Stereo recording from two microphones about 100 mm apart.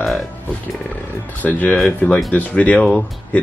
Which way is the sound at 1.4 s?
15° left (ahead or behind).